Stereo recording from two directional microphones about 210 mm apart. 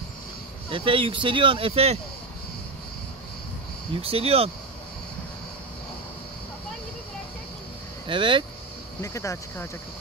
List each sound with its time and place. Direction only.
0.7 s speech: 25° right (ahead or behind)
3.9 s speech: 25° right (ahead or behind)
8.1 s speech: 25° right (ahead or behind)
9.0 s speech: 15° left (ahead or behind)